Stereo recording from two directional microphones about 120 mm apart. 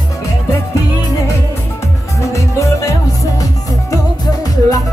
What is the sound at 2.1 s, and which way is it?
Music, 25° left (ahead or behind).